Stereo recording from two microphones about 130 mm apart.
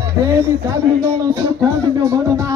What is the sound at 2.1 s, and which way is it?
Music, 25° right (ahead or behind).